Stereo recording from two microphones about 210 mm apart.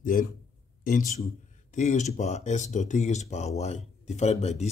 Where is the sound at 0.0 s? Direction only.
40° left (ahead or behind).